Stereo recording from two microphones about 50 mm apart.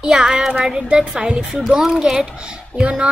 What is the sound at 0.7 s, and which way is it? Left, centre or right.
A child's voice, centre.